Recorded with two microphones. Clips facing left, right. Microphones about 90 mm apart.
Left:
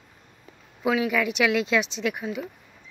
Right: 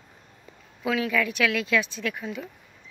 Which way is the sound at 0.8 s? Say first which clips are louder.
Left 2 dB; 15° left (ahead or behind).